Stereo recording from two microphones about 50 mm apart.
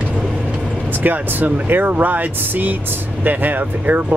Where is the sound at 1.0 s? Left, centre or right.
Right.